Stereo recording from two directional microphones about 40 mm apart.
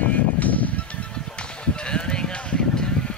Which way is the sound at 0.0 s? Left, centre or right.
Left.